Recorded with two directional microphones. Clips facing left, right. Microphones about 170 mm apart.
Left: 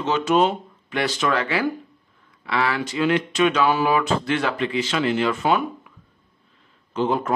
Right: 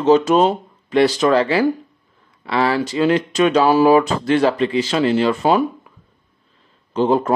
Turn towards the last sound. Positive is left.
turn(degrees=-35)  # may be behind; listen again after turning